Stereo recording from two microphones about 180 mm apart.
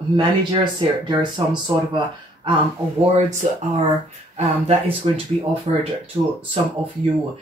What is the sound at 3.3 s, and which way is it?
Speech, 40° right (ahead or behind).